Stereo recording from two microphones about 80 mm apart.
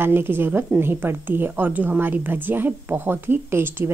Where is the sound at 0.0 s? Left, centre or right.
Right.